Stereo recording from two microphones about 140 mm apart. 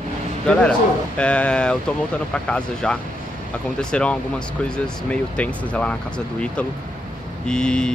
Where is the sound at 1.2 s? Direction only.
10° left (ahead or behind).